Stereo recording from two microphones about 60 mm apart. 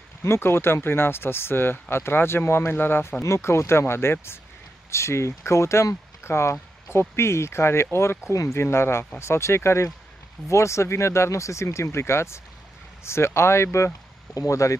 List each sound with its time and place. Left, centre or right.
0.2 s speech: left
3.2 s speech: left
14.3 s speech: left